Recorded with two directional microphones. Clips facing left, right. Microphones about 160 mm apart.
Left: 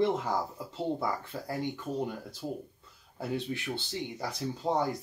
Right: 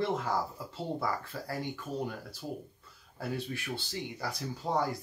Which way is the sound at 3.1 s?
20° left (ahead or behind).